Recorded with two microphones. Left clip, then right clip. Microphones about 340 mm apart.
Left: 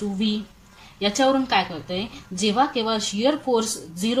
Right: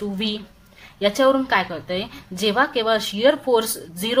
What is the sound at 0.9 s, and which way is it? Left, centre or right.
A woman's voice, centre.